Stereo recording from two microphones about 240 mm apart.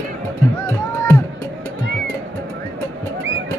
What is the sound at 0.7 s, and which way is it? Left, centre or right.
Music, centre.